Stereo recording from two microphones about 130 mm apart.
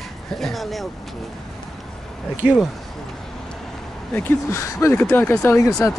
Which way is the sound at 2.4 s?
15° right (ahead or behind).